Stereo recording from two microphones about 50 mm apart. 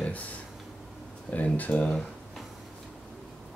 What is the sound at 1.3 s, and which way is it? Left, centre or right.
Speech, left.